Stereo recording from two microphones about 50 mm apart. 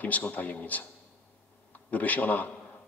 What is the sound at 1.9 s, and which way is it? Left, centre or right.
Speech, left.